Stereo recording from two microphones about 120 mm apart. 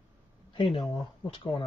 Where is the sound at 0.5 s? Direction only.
45° left (ahead or behind).